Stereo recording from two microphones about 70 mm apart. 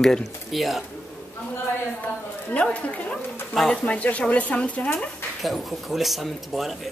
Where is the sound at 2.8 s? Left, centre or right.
Centre.